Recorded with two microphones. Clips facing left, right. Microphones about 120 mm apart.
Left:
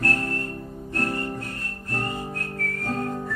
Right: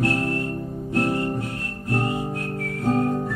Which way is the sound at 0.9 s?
10° right (ahead or behind).